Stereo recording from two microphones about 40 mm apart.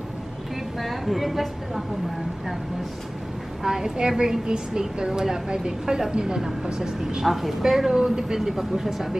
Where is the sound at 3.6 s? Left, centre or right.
Centre.